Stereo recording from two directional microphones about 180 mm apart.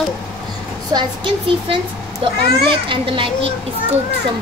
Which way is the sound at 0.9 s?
25° right (ahead or behind).